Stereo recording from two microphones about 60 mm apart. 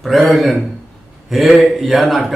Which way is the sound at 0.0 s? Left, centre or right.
Centre.